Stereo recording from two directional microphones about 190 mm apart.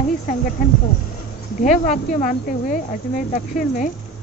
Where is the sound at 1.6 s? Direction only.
40° left (ahead or behind).